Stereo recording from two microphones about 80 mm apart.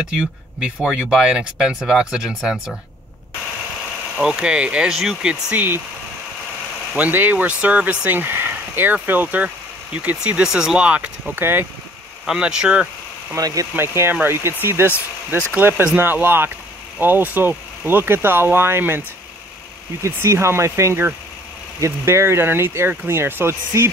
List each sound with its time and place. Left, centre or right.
0.6 s speech: centre
4.2 s speech: centre
7.0 s speech: right
11.3 s speech: right
12.3 s speech: centre
13.4 s speech: right
13.7 s speech: right